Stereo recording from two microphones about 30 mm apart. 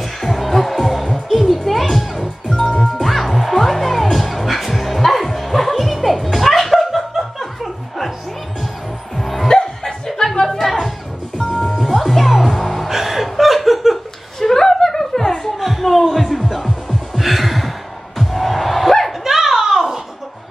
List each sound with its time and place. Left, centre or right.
0.2 s music: centre
2.1 s music: centre
9.1 s music: centre
9.5 s music: left
10.5 s chatter: centre
12.0 s music: centre
12.9 s chuckle: centre
14.4 s chuckle: centre
15.6 s a sound: centre
16.3 s music: centre
19.2 s a sound: centre